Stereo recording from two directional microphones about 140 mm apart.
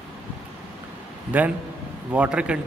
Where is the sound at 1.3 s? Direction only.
10° right (ahead or behind).